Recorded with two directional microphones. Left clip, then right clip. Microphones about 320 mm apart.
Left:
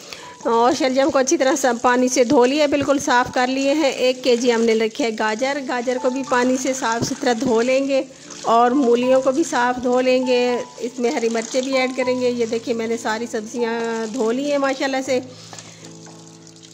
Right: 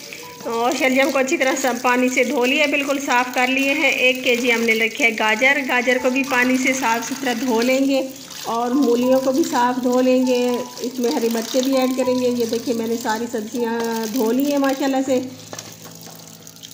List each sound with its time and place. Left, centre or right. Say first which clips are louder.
0.5 s speech: left 2 dB; left